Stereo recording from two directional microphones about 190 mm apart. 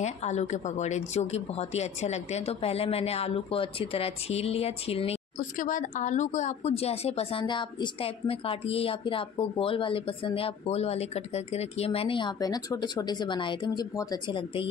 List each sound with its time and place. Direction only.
0.0 s a woman's voice: 35° left (ahead or behind)
5.6 s a woman's voice: 45° left (ahead or behind); by 14.7 s 25° left (ahead or behind)